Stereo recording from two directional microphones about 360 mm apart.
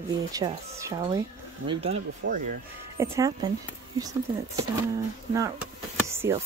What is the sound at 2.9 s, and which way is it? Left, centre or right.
Speech, centre.